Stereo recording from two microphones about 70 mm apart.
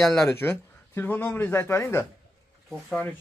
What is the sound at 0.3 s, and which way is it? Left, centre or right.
Speech, left.